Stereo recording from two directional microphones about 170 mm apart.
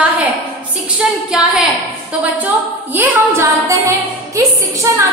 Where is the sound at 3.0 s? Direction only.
15° right (ahead or behind).